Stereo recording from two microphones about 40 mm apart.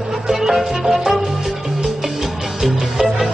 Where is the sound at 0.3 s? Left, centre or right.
Centre.